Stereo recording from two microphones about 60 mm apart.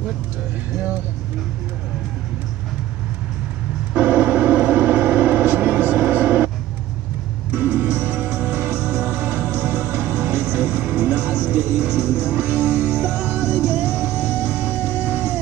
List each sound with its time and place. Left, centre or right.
3.9 s vehicle: right
7.5 s music: right
14.8 s a sound: right